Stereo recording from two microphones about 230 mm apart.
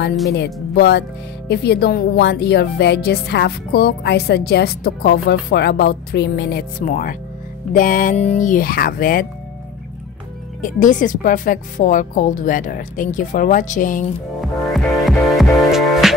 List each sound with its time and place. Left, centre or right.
0.3 s a woman's voice: left
10.6 s a woman's voice: left
14.7 s music: centre